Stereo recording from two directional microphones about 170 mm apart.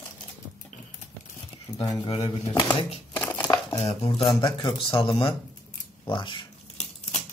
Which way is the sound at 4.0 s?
30° left (ahead or behind).